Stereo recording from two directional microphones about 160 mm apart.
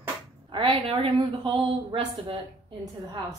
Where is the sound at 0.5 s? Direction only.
30° right (ahead or behind).